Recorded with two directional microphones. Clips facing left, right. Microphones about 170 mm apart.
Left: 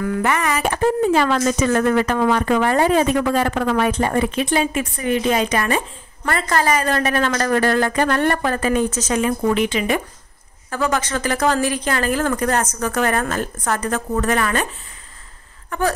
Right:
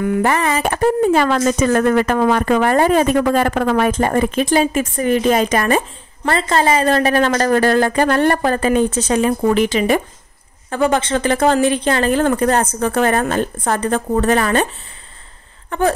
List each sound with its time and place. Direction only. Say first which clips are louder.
0.2 s a woman's voice: right 2 dB; 30° right (ahead or behind)
1.0 s a woman's voice: right 2 dB; 45° right (ahead or behind)
6.2 s a woman's voice: right 3 dB; 25° right (ahead or behind)
15.7 s a woman's voice: right 4 dB; 30° right (ahead or behind)